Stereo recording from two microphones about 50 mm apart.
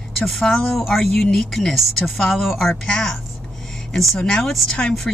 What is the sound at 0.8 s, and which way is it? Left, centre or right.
Speech, centre.